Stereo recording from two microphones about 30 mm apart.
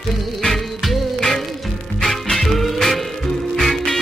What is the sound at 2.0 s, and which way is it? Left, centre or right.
Music, centre.